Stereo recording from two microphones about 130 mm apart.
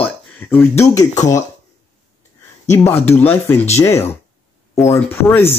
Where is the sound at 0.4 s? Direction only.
15° left (ahead or behind).